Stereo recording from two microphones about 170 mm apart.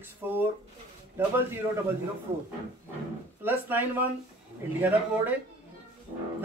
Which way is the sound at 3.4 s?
10° right (ahead or behind).